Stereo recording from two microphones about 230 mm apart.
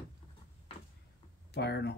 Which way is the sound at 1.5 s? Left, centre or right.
Left.